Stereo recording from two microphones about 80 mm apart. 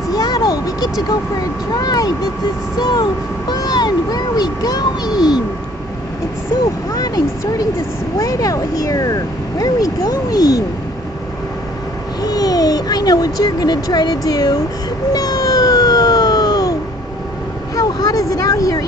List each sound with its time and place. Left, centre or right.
0.1 s vehicle: left
1.8 s speech: left
5.1 s a sound: centre
8.2 s speech: left
12.2 s a child's voice: left
15.1 s emergency vehicle: left
17.7 s a sound: left